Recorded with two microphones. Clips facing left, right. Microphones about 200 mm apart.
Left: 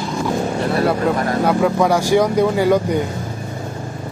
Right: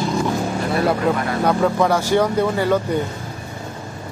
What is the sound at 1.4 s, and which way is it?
Speech, 5° left (ahead or behind).